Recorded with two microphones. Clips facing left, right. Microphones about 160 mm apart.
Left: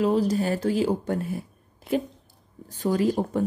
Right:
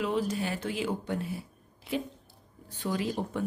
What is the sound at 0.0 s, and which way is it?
Speech, 40° left (ahead or behind).